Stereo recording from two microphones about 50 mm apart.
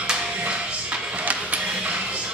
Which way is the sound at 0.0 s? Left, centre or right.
Right.